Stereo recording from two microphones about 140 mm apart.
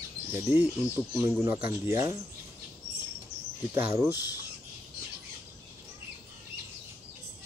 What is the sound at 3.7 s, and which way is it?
Speech, 20° right (ahead or behind).